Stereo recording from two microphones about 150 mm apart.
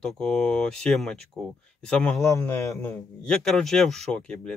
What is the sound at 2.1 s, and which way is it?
A man's voice, 20° left (ahead or behind).